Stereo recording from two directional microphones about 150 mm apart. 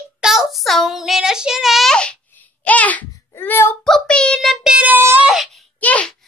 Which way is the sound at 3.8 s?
5° left (ahead or behind).